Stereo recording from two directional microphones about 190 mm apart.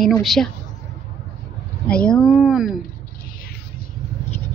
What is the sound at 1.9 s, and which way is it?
Speech, 5° left (ahead or behind).